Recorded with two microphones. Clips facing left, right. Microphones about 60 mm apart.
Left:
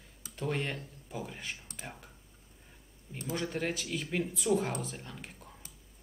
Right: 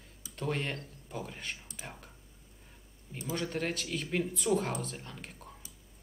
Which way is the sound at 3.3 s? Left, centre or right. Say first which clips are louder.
Even; centre.